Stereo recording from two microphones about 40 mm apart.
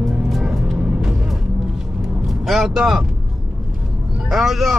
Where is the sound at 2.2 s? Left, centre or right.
Centre.